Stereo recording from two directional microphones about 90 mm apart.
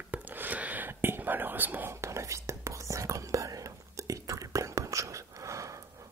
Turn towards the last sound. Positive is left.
turn(degrees=-35)  # may be behind; listen again after turning